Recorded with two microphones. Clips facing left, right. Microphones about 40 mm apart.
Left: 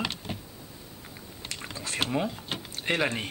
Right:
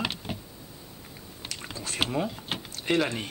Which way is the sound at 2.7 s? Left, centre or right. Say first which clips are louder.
Right 1 dB; left.